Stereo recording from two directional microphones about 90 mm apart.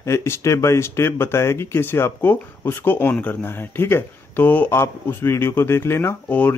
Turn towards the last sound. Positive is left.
turn(degrees=15)  # may be behind; listen again after turning